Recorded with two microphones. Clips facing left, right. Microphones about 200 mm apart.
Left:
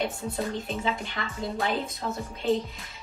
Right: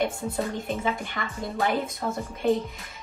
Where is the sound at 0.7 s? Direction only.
50° right (ahead or behind).